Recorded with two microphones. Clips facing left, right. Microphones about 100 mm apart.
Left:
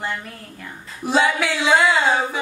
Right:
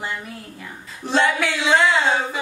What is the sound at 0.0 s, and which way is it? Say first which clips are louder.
A woman's voice: left 1 dB; 5° right (ahead or behind).